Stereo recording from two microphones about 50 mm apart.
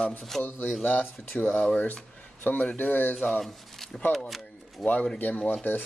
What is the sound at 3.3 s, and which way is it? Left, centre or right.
Speech, centre.